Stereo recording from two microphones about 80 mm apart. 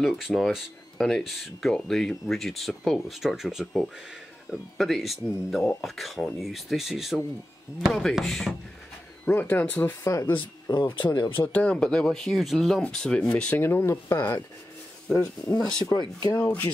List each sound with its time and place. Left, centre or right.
0.0 s speech: centre
9.2 s speech: left
10.3 s speech: left
11.1 s speech: left
11.4 s speech: left
11.7 s speech: centre
13.3 s speech: left
15.4 s speech: centre
15.9 s speech: left
16.3 s speech: left